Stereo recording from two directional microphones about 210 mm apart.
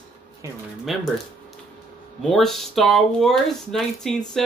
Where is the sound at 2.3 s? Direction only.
Centre (ahead or behind).